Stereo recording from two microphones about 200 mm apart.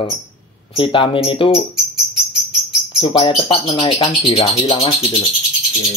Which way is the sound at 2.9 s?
25° left (ahead or behind).